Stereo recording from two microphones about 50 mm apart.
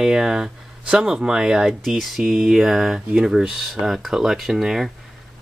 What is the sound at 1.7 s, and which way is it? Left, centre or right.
Speech, centre.